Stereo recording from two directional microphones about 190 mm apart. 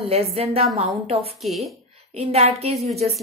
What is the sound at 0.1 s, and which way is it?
A woman's voice, 30° right (ahead or behind).